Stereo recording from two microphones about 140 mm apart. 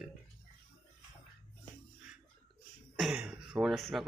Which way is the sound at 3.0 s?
5° right (ahead or behind).